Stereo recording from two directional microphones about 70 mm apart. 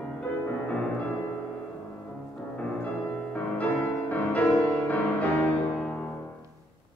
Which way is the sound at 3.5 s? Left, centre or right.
Left.